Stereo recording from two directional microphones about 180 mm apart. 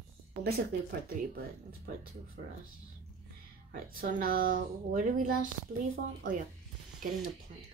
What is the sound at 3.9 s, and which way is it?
Speech, 55° right (ahead or behind).